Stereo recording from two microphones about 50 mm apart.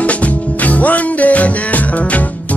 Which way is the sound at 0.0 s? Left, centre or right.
Left.